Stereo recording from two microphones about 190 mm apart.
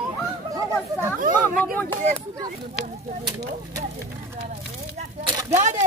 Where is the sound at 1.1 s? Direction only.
45° right (ahead or behind).